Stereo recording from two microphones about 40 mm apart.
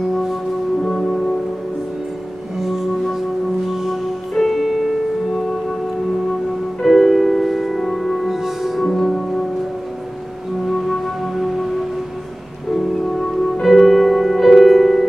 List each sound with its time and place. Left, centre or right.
0.8 s music: centre
3.7 s music: centre
6.8 s music: centre
8.8 s music: centre
10.7 s music: centre
12.7 s music: centre